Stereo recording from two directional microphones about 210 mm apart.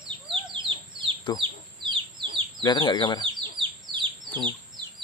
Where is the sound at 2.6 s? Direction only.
20° left (ahead or behind).